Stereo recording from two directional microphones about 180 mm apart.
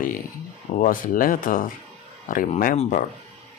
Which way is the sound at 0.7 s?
50° left (ahead or behind).